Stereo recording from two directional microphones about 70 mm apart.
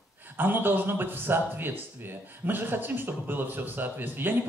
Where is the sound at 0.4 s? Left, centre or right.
Right.